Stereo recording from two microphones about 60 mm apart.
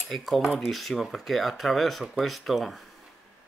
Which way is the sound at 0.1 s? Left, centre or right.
Centre.